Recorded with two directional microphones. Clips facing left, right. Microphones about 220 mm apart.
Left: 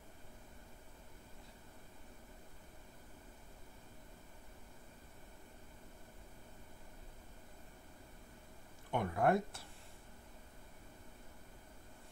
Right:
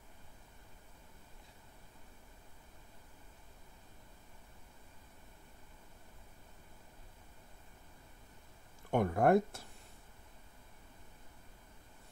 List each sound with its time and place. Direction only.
8.9 s speech: 50° right (ahead or behind)